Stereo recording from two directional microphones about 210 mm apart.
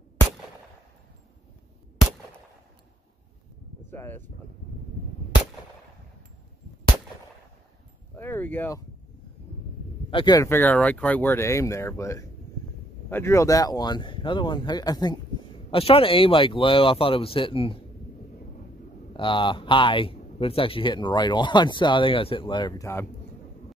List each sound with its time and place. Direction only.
3.9 s speech: 10° left (ahead or behind)
8.2 s speech: 10° left (ahead or behind)
10.1 s speech: 20° left (ahead or behind)
19.1 s speech: 25° left (ahead or behind)